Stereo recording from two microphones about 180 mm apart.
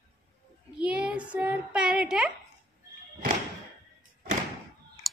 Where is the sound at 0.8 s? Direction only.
5° right (ahead or behind).